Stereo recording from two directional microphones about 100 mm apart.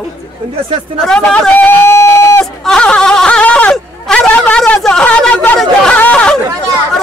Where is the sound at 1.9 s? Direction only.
25° left (ahead or behind).